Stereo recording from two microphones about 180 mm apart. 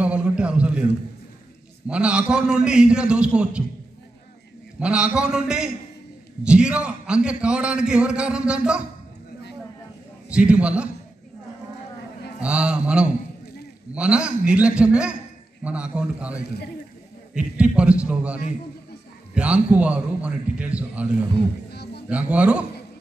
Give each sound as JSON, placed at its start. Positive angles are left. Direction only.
{"t": 0.0, "sound": "a sound", "side_deg": -5}
{"t": 1.9, "sound": "a man's voice", "side_deg": -5}
{"t": 4.7, "sound": "a man's voice", "side_deg": -5}
{"t": 10.2, "sound": "a man's voice", "side_deg": -5}
{"t": 12.4, "sound": "a man's voice", "side_deg": -5}
{"t": 21.6, "sound": "a sound", "side_deg": 65}
{"t": 22.1, "sound": "a man's voice", "side_deg": -5}